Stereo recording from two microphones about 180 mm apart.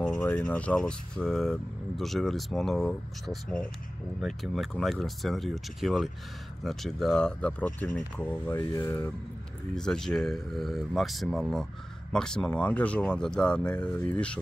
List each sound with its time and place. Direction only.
0.5 s speech: 5° left (ahead or behind)
8.5 s speech: 20° left (ahead or behind)
9.8 s speech: 5° left (ahead or behind)